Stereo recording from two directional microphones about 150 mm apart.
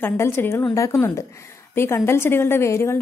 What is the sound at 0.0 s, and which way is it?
Speech, 15° left (ahead or behind).